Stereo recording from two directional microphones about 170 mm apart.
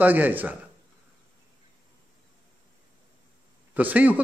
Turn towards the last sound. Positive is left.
turn(degrees=-10)  # may be behind; listen again after turning